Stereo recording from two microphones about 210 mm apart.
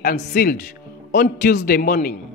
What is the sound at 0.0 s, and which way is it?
A man's voice, 45° left (ahead or behind).